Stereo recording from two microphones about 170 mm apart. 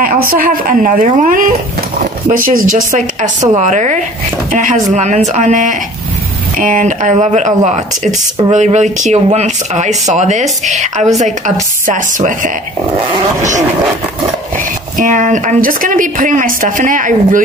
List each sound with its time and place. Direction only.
0.0 s speech: 60° right (ahead or behind)
15.0 s speech: 50° right (ahead or behind)